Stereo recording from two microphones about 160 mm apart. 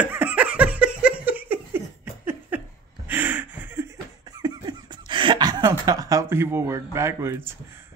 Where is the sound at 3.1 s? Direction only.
10° right (ahead or behind).